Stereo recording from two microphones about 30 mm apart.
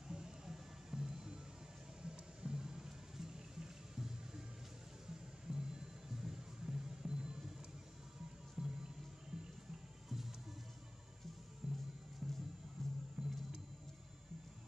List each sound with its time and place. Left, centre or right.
0.1 s a sound: right
0.5 s music: centre
5.5 s music: right
8.6 s music: centre
10.0 s music: centre
11.6 s music: centre
12.8 s music: centre